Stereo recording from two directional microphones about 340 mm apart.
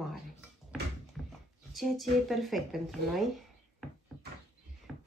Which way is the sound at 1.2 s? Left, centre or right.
Centre.